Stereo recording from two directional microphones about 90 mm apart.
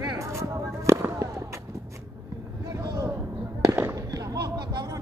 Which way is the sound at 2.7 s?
40° right (ahead or behind).